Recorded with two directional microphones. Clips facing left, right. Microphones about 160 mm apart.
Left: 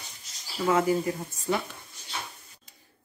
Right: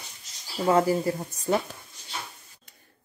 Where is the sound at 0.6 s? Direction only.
35° right (ahead or behind).